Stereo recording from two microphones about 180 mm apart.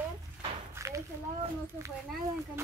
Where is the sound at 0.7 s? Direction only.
15° right (ahead or behind).